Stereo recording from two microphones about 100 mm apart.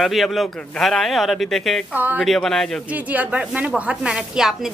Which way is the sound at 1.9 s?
20° right (ahead or behind).